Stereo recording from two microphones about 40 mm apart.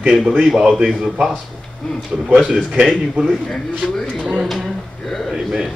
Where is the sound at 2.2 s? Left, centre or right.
Right.